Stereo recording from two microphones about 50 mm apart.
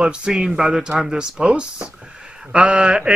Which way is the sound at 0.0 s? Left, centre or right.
Centre.